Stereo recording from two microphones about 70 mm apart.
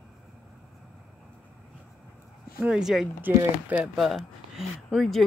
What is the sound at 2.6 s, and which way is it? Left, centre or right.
Speech, centre.